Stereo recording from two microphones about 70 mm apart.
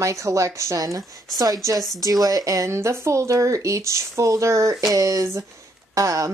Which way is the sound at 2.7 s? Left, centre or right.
Right.